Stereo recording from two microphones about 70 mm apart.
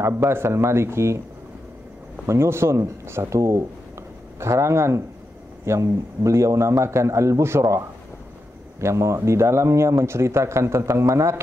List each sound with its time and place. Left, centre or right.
0.0 s speech: right
2.2 s a man's voice: right